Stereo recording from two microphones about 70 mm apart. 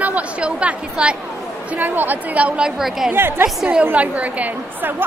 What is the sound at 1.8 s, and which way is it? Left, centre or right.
Speech, right.